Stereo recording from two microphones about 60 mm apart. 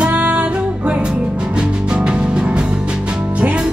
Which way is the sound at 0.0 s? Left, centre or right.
Right.